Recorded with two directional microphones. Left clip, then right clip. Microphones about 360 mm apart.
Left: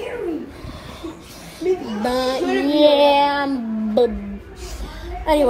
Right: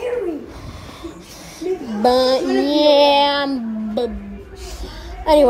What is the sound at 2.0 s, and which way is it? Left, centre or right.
Music, centre.